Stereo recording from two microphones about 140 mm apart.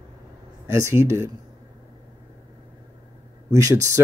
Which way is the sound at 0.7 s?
20° right (ahead or behind).